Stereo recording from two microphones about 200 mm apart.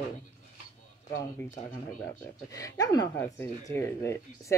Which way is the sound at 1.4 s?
15° left (ahead or behind).